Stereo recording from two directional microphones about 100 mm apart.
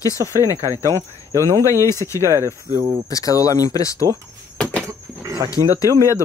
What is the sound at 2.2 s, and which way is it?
Speech, 30° right (ahead or behind).